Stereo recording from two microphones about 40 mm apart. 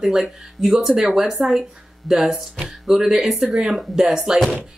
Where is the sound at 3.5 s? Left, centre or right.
Centre.